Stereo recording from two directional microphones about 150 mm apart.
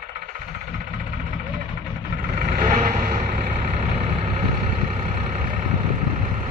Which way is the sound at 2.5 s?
55° right (ahead or behind).